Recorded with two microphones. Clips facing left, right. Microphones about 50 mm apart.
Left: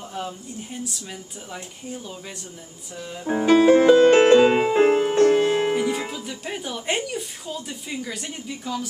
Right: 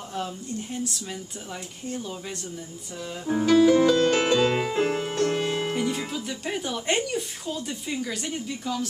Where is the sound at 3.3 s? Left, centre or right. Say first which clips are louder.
Left 3 dB; left.